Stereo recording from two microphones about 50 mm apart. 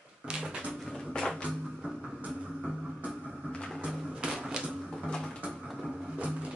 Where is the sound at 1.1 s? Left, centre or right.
Centre.